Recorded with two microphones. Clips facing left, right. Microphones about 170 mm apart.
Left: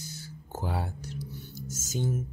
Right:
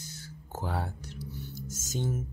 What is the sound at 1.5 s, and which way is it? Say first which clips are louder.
Music: left 2 dB; centre (ahead or behind).